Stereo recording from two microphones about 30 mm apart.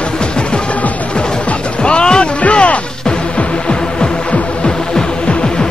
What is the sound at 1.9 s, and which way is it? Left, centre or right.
Music, left.